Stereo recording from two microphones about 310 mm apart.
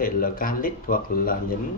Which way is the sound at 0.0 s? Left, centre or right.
Left.